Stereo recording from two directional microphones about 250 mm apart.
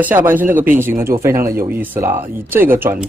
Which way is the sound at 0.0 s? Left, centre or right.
Centre.